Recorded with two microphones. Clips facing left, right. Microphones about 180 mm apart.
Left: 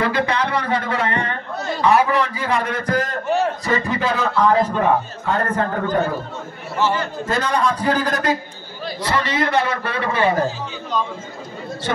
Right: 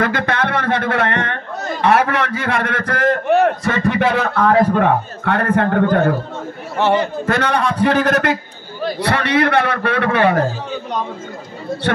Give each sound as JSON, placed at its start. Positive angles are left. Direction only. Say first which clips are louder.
{"t": 0.0, "sound": "music", "louder": "right 1 dB", "side_deg": -65}
{"t": 1.8, "sound": "a man's voice", "louder": "right 1 dB", "side_deg": -70}
{"t": 7.2, "sound": "a man's voice", "louder": "left 1 dB", "side_deg": -65}